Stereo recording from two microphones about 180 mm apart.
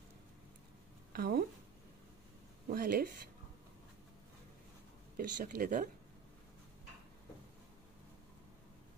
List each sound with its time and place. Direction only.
1.1 s speech: 60° right (ahead or behind)
2.7 s speech: 55° right (ahead or behind)
5.1 s speech: 55° right (ahead or behind)